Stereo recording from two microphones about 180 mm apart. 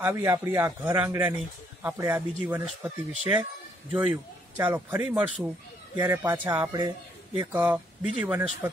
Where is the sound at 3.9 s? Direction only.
10° right (ahead or behind).